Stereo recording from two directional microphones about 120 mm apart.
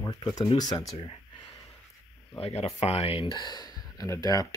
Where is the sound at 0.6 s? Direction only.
35° left (ahead or behind).